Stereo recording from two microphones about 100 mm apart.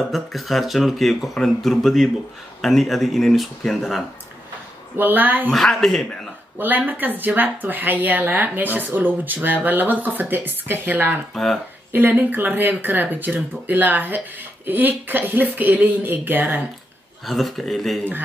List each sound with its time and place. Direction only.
0.1 s speech: centre (ahead or behind)
4.9 s speech: 20° right (ahead or behind)
5.5 s speech: 5° left (ahead or behind)
6.9 s speech: 20° right (ahead or behind)
11.3 s speech: 5° left (ahead or behind)
11.9 s speech: 20° right (ahead or behind)
17.3 s speech: centre (ahead or behind)